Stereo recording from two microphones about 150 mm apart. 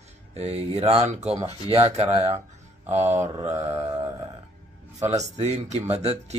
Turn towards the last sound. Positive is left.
turn(degrees=-45)  # may be behind; listen again after turning